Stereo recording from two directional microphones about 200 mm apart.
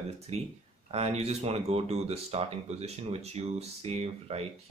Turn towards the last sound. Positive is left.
turn(degrees=-30)  # may be behind; listen again after turning